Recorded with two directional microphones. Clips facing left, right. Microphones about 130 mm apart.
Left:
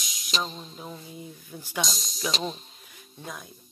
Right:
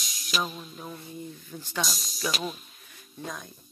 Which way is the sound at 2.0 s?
5° right (ahead or behind).